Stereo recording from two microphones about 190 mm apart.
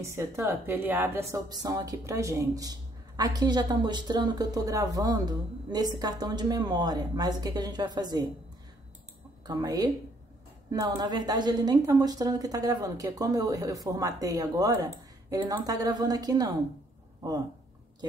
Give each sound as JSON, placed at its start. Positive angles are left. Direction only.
{"t": 0.0, "sound": "a woman's voice", "side_deg": -15}
{"t": 9.5, "sound": "a woman's voice", "side_deg": -20}